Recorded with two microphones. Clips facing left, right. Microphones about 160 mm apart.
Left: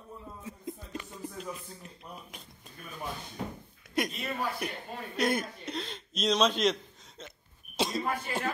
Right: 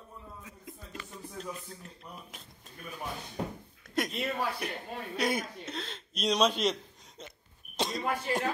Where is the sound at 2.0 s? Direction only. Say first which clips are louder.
Left 1 dB; centre (ahead or behind).